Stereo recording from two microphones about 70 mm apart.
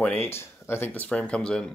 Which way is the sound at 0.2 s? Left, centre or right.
Left.